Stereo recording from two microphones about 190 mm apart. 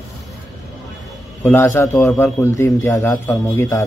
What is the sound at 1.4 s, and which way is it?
A man's voice, 10° left (ahead or behind).